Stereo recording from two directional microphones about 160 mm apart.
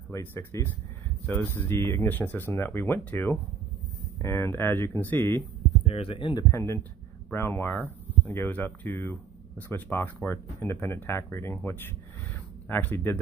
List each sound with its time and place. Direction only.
0.1 s speech: 15° left (ahead or behind)
5.9 s speech: 35° left (ahead or behind)
6.5 s speech: 15° left (ahead or behind)